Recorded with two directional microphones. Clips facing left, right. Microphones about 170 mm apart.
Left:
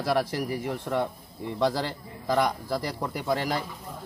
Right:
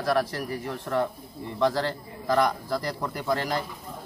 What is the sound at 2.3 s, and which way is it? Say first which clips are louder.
Speech: right 1 dB; 10° left (ahead or behind).